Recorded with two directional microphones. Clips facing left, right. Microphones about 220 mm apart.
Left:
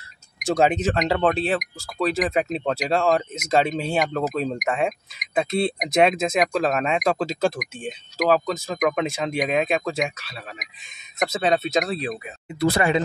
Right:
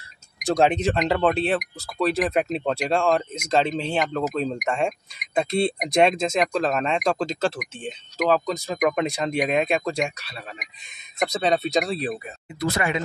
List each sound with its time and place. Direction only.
0.4 s speech: 5° left (ahead or behind)
12.5 s speech: 35° left (ahead or behind)